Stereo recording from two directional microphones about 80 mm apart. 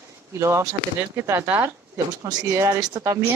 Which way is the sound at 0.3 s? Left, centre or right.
Right.